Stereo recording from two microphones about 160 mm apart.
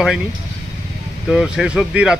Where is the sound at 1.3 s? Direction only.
5° right (ahead or behind).